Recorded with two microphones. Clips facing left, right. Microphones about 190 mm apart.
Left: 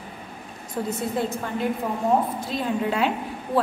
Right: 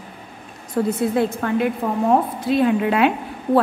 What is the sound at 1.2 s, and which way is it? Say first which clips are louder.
A woman's voice: right 5 dB; 65° right (ahead or behind).